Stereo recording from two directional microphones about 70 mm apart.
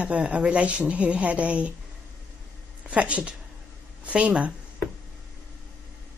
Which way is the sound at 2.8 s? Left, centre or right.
Centre.